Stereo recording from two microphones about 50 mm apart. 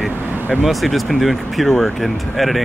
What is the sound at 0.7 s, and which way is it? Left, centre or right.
Speech, centre.